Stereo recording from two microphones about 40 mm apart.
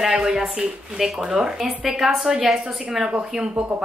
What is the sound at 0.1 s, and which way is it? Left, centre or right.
Speech, centre.